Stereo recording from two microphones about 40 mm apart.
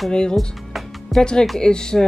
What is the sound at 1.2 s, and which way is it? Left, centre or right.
Speech, centre.